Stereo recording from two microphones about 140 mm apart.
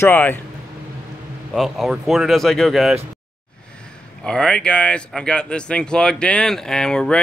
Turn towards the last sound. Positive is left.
turn(degrees=5)  # may be behind; listen again after turning